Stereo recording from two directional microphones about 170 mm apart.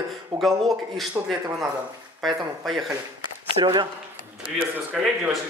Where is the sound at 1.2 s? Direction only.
10° right (ahead or behind).